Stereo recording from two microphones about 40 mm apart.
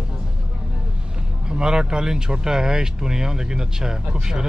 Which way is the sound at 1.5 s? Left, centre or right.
Centre.